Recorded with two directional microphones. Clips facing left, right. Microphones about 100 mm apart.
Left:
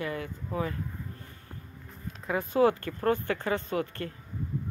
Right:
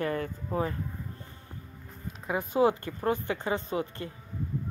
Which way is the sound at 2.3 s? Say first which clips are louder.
Left 1 dB; 20° right (ahead or behind).